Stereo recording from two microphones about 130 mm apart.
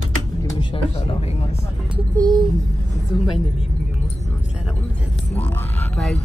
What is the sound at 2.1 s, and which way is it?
Speech, 30° right (ahead or behind).